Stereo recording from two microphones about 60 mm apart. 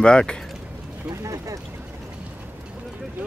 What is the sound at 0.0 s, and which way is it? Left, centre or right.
Speech, centre.